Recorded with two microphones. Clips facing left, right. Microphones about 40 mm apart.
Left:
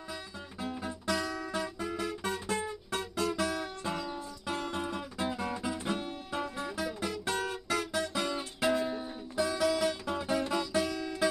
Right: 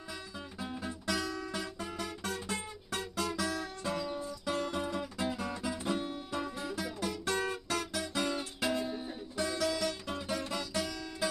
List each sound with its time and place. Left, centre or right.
1.1 s music: centre
2.0 s music: left
2.5 s music: centre
3.2 s music: left
3.4 s music: left
4.0 s music: centre
7.7 s guitar: left
8.1 s music: centre